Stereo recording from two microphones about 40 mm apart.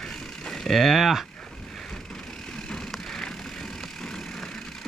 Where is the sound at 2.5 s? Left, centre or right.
Centre.